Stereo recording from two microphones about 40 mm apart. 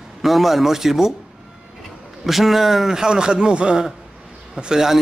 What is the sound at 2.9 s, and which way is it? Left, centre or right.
A man's voice, centre.